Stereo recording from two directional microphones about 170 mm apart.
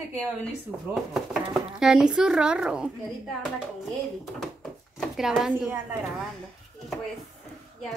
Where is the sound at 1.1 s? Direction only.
5° right (ahead or behind).